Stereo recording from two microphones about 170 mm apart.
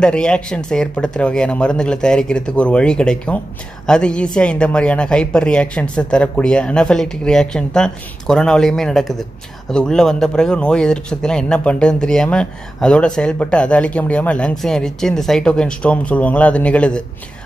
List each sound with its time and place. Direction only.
0.0 s speech: 5° left (ahead or behind)